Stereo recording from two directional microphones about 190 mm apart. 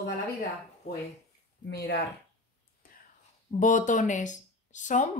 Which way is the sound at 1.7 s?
60° left (ahead or behind).